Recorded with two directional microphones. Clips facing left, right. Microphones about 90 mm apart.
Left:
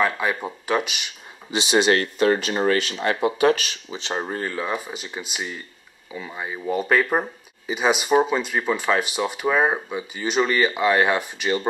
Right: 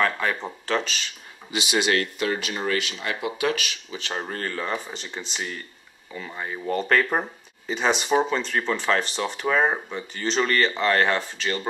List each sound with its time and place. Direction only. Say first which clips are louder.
0.0 s speech: left 2 dB; 10° left (ahead or behind)
1.5 s speech: left 4 dB; 30° left (ahead or behind)
3.9 s speech: left 4 dB; 20° left (ahead or behind)
4.3 s speech: even; 10° left (ahead or behind)